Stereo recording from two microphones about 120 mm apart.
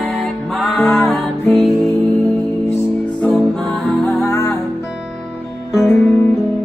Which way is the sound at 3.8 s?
5° left (ahead or behind).